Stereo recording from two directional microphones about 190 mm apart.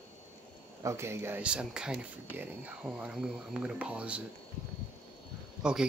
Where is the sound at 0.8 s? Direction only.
15° right (ahead or behind).